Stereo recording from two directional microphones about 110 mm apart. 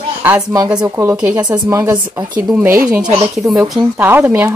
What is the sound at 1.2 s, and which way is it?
Cutlery, 10° right (ahead or behind).